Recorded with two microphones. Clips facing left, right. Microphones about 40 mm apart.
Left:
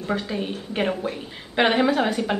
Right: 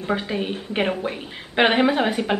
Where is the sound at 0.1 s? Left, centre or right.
Right.